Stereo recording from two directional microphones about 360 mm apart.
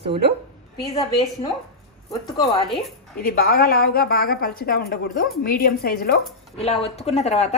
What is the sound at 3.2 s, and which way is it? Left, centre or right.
A woman's voice, left.